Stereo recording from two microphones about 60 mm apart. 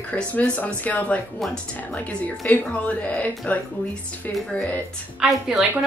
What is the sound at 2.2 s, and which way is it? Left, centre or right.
Speech, left.